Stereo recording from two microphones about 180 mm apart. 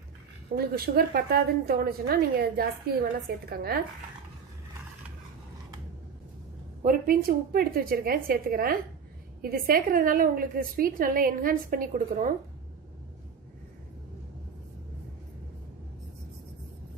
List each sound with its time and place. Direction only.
0.6 s a woman's voice: 60° right (ahead or behind)
6.8 s a woman's voice: 50° right (ahead or behind)